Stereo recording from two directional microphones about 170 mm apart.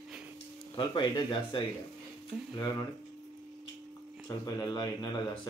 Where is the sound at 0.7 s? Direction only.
25° left (ahead or behind).